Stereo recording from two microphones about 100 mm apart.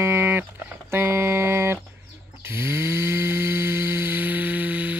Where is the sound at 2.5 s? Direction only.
25° right (ahead or behind).